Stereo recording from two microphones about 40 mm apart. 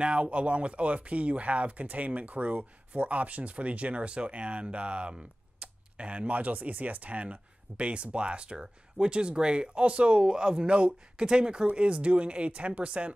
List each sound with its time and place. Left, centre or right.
0.0 s speech: right